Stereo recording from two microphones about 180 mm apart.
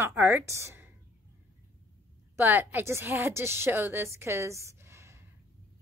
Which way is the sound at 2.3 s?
10° right (ahead or behind).